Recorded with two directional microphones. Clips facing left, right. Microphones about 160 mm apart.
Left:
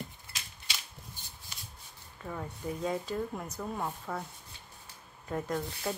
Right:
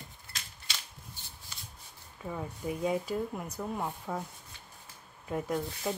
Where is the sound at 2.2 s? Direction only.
10° right (ahead or behind).